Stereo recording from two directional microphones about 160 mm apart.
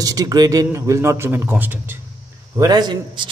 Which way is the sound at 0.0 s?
25° right (ahead or behind).